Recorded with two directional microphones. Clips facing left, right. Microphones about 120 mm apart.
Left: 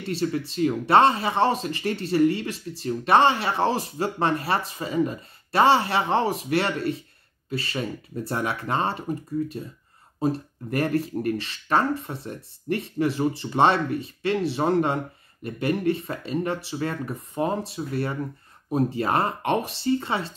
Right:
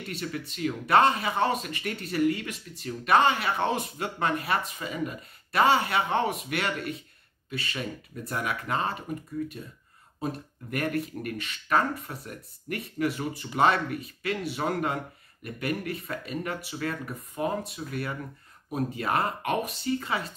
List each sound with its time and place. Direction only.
0.1 s speech: 30° left (ahead or behind)